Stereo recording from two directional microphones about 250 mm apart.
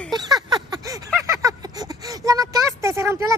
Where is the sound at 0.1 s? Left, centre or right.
Centre.